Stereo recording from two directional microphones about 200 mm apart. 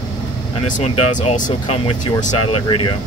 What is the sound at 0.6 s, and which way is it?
Speech, 35° left (ahead or behind).